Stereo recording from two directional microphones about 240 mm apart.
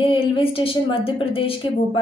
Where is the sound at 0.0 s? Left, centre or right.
Left.